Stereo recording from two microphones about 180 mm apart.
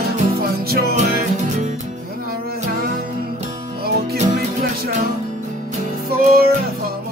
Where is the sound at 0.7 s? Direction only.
60° right (ahead or behind).